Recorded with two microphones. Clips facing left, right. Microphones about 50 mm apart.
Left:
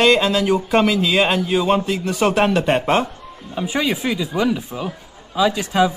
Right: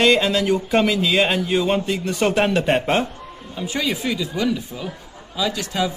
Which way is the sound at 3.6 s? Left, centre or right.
Left.